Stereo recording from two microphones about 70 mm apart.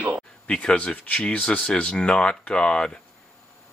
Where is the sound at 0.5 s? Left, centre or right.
Centre.